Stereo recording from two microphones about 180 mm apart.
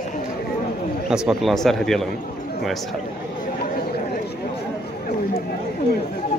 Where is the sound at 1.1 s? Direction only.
5° right (ahead or behind).